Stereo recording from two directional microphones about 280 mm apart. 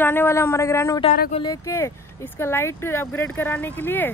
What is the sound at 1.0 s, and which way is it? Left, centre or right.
Speech, left.